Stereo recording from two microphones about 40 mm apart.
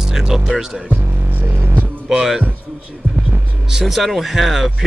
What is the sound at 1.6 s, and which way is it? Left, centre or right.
Music, right.